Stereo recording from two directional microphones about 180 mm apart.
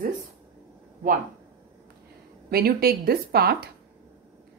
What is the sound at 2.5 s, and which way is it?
Speech, 60° right (ahead or behind).